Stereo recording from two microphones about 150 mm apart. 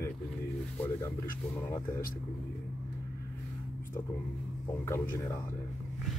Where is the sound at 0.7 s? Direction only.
15° left (ahead or behind).